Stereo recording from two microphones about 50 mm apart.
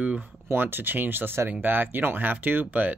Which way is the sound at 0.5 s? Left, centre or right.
Right.